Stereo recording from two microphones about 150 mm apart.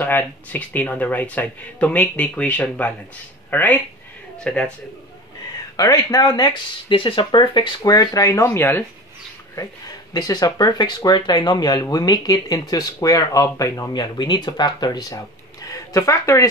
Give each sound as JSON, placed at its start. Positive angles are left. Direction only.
{"t": 0.0, "sound": "speech", "side_deg": 10}
{"t": 5.8, "sound": "speech", "side_deg": 25}
{"t": 10.1, "sound": "speech", "side_deg": 25}